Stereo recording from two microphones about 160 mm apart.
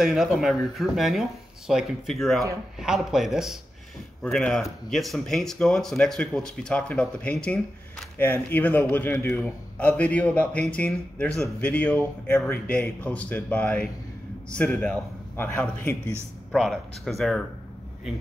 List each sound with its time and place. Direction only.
0.0 s speech: centre (ahead or behind)
8.5 s a man's voice: 10° left (ahead or behind)
15.3 s a man's voice: 15° left (ahead or behind)